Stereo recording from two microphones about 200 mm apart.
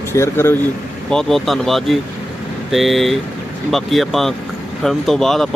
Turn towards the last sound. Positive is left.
turn(degrees=0)  # may be behind; listen again after turning